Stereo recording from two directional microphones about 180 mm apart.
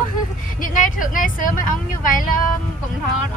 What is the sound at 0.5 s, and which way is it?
Speech, 50° left (ahead or behind).